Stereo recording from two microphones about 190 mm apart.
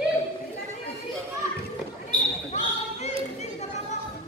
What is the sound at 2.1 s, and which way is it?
Basketball bounce, 35° left (ahead or behind).